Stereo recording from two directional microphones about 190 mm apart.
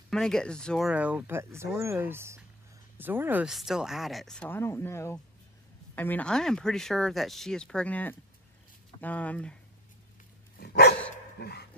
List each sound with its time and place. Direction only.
0.1 s speech: 5° left (ahead or behind)
10.6 s dog: 60° left (ahead or behind)